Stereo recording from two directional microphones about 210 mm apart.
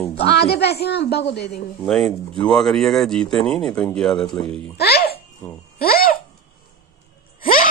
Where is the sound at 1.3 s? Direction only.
Centre (ahead or behind).